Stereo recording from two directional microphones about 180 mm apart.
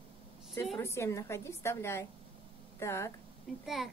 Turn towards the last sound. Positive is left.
turn(degrees=0)  # may be behind; listen again after turning